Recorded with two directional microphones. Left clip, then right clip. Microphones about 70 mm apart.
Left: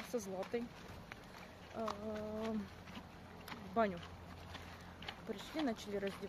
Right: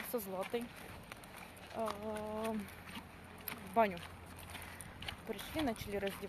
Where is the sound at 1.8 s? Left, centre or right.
Left.